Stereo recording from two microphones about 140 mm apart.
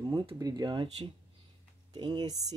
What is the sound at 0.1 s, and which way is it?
Speech, 30° right (ahead or behind).